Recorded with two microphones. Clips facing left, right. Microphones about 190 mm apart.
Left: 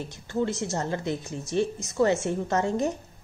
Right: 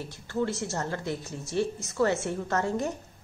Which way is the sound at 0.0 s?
20° left (ahead or behind).